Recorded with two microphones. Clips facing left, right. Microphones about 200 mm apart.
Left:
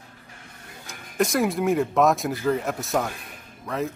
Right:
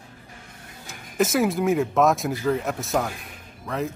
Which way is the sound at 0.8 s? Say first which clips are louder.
Right 1 dB; centre (ahead or behind).